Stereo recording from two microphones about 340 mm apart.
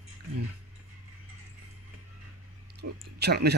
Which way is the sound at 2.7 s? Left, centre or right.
Right.